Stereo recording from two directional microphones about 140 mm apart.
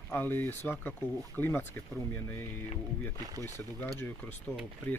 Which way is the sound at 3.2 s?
25° right (ahead or behind).